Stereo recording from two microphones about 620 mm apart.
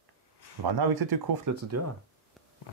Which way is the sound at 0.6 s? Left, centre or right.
Right.